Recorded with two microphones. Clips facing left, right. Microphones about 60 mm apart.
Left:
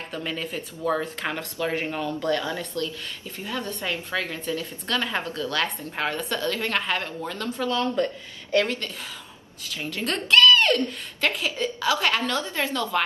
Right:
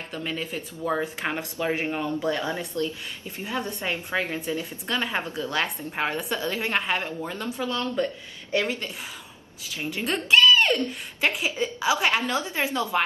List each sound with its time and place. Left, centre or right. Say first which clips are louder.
0.1 s speech: even; centre
0.9 s a woman's voice: even; centre